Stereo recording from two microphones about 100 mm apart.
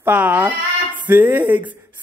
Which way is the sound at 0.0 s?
15° right (ahead or behind).